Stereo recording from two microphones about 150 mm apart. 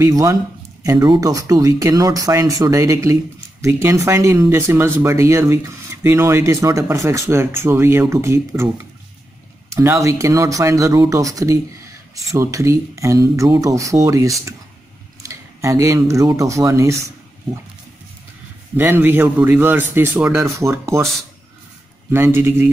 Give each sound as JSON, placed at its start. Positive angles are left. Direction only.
{"t": 0.0, "sound": "speech", "side_deg": -20}
{"t": 9.7, "sound": "speech", "side_deg": -20}
{"t": 18.8, "sound": "speech", "side_deg": -15}
{"t": 22.1, "sound": "speech", "side_deg": -15}